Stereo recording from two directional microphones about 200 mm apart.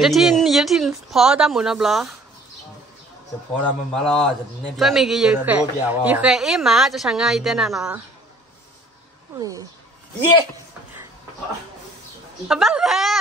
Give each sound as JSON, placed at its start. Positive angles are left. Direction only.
{"t": 0.0, "sound": "a man's voice", "side_deg": 0}
{"t": 3.6, "sound": "a man's voice", "side_deg": 5}
{"t": 9.4, "sound": "speech", "side_deg": -20}
{"t": 12.4, "sound": "a man's voice", "side_deg": 0}